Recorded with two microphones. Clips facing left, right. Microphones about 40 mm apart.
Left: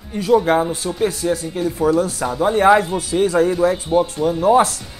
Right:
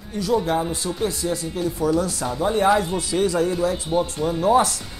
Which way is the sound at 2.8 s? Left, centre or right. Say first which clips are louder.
Left 3 dB; centre.